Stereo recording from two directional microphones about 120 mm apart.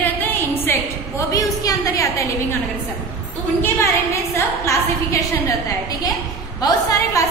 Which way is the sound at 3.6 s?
25° left (ahead or behind).